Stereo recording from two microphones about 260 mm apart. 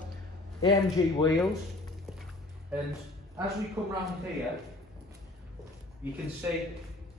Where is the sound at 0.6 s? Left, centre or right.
Centre.